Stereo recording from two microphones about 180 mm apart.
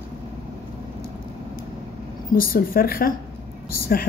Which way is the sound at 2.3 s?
55° left (ahead or behind).